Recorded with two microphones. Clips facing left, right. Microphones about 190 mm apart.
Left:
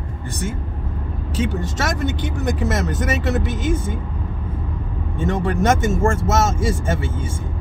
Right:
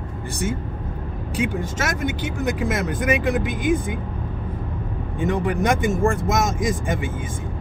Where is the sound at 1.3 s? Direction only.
10° right (ahead or behind).